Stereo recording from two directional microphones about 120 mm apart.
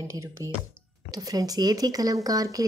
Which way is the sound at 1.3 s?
35° right (ahead or behind).